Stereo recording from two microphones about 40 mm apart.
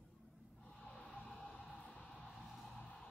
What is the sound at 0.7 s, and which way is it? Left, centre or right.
Snort, centre.